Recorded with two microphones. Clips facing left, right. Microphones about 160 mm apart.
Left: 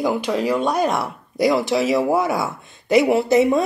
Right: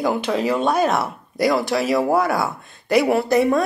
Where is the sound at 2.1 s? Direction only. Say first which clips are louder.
Right 1 dB; 20° left (ahead or behind).